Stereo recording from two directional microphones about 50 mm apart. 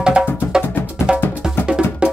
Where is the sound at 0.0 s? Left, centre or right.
Centre.